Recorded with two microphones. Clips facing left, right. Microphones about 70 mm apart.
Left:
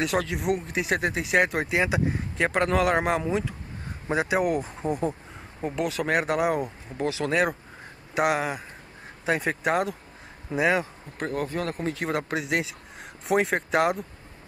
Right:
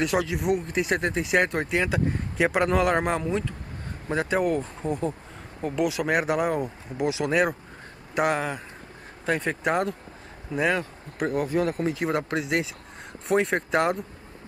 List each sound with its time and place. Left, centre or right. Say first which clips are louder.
0.0 s speech: right 1 dB; centre
2.3 s speech: right 1 dB; centre
5.8 s speech: right 1 dB; centre
7.0 s speech: right 2 dB; centre
7.2 s speech: even; centre
11.1 s speech: right 4 dB; centre
11.8 s speech: right 2 dB; centre